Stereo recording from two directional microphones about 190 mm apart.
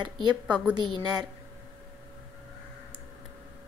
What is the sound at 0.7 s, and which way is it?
Speech, 25° right (ahead or behind).